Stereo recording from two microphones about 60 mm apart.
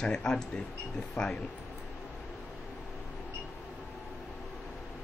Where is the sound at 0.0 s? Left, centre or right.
Centre.